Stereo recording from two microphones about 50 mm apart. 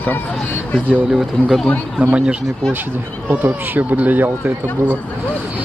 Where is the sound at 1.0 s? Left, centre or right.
Centre.